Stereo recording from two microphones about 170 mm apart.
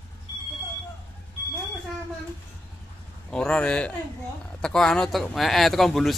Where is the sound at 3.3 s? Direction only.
5° left (ahead or behind).